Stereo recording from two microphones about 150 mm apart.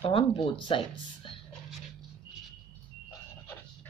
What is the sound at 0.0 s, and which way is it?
Speech, 35° left (ahead or behind).